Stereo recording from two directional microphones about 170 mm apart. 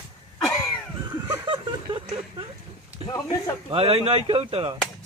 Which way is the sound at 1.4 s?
30° right (ahead or behind).